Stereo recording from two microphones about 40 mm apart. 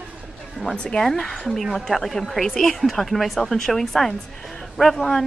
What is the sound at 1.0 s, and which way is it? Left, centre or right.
Speech, centre.